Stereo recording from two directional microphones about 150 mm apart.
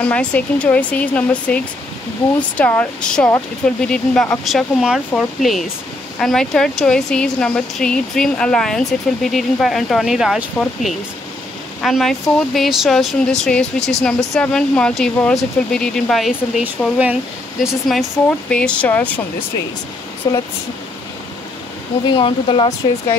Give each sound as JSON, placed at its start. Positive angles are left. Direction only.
{"t": 0.0, "sound": "speech", "side_deg": 10}
{"t": 20.2, "sound": "speech", "side_deg": 25}
{"t": 22.0, "sound": "speech", "side_deg": 35}